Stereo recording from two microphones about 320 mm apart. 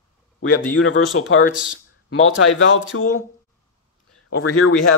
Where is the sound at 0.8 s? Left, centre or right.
Left.